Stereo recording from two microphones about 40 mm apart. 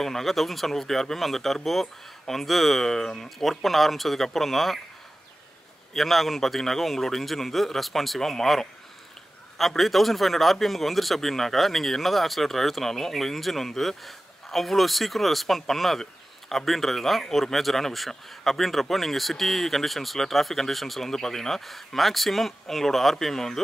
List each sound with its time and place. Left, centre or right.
0.0 s speech: centre
3.0 s speech: centre
3.3 s speech: centre
5.9 s speech: centre